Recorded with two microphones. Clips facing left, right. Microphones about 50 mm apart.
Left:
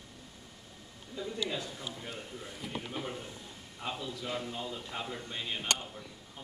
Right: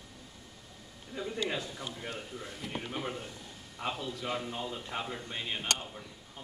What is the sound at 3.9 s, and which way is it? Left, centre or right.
A man's voice, centre.